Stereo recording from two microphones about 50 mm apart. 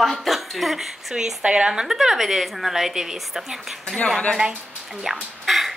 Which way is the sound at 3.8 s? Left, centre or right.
Centre.